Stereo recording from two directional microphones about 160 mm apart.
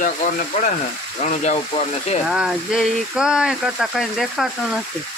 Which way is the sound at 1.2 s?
50° left (ahead or behind).